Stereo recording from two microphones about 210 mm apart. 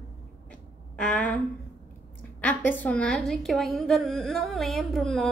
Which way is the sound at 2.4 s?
10° left (ahead or behind).